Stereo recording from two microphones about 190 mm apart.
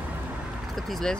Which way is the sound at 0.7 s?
Centre (ahead or behind).